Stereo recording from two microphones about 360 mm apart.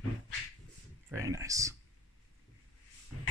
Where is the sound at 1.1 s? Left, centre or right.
Centre.